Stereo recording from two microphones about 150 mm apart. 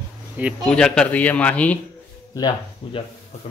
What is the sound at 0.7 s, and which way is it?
A man's voice, 5° left (ahead or behind).